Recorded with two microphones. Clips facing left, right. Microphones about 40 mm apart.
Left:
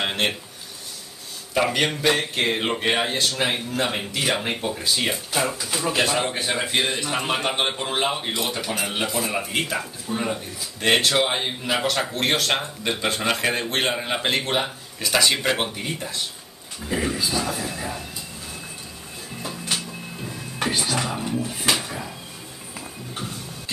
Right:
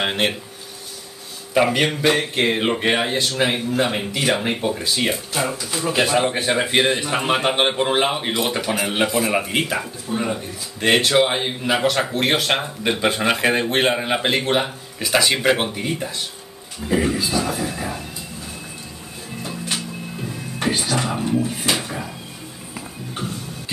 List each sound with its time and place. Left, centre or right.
0.0 s speech: centre
1.5 s a man's voice: centre
7.5 s speech: right; by 18.0 s centre
19.5 s a sound: centre
20.6 s speech: centre
22.8 s a sound: centre